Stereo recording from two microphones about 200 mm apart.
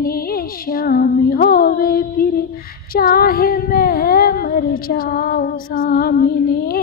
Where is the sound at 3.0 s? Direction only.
50° left (ahead or behind).